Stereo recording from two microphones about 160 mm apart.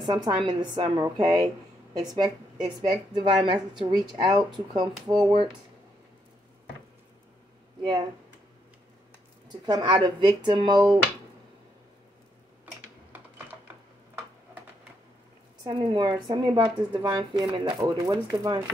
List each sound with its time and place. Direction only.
0.0 s a woman's voice: 30° right (ahead or behind)
7.8 s a woman's voice: 25° right (ahead or behind)
9.5 s a woman's voice: 25° right (ahead or behind)
15.6 s a woman's voice: 30° right (ahead or behind)